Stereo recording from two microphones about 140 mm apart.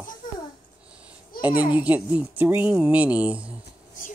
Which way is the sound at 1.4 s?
10° right (ahead or behind).